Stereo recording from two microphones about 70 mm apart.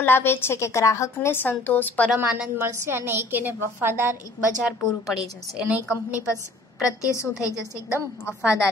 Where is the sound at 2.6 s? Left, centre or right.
Right.